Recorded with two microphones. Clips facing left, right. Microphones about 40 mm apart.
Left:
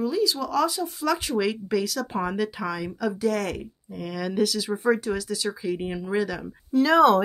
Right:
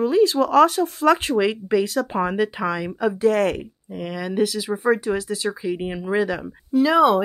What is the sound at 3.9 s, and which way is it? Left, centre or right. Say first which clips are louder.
Speech: right 2 dB; centre.